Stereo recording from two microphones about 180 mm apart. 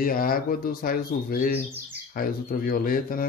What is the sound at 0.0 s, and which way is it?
Speech, 55° left (ahead or behind).